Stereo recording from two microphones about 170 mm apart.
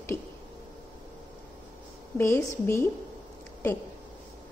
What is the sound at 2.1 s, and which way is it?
Speech, 15° left (ahead or behind).